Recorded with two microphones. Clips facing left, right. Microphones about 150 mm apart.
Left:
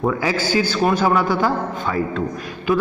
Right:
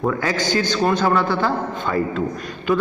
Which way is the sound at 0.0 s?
10° left (ahead or behind).